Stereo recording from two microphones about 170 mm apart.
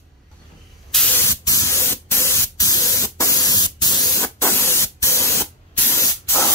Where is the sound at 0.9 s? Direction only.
10° left (ahead or behind).